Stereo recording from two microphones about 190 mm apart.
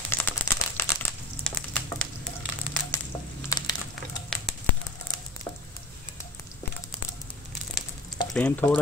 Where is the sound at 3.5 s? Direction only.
20° left (ahead or behind).